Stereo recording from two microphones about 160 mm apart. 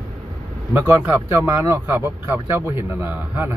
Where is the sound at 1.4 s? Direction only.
20° right (ahead or behind).